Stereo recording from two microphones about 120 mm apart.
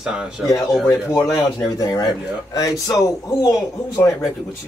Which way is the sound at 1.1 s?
25° left (ahead or behind).